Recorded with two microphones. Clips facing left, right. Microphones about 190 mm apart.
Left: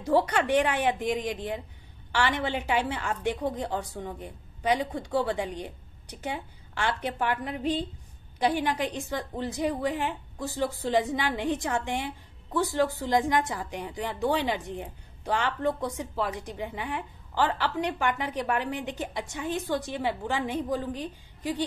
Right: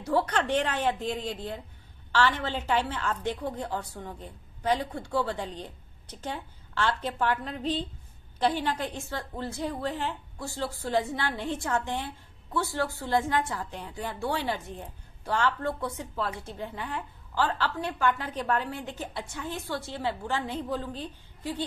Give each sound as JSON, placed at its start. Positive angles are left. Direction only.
{"t": 0.0, "sound": "a woman's voice", "side_deg": 15}